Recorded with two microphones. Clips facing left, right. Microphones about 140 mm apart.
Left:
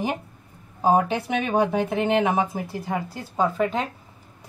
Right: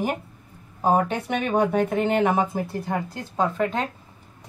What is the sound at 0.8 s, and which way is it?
A woman's voice, 5° left (ahead or behind).